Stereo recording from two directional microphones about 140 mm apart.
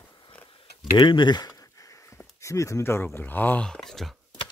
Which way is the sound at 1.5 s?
25° left (ahead or behind).